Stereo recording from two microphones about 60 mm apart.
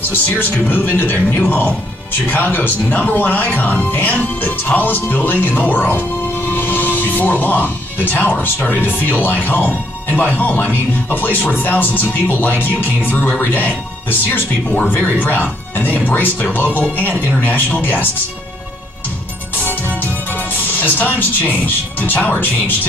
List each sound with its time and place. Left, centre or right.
0.1 s a man's voice: left
20.5 s speech: left